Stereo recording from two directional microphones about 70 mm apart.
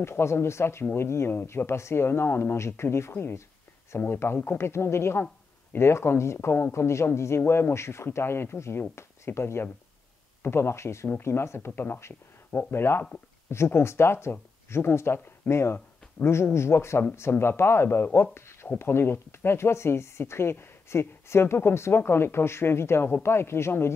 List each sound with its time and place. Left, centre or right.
0.0 s speech: left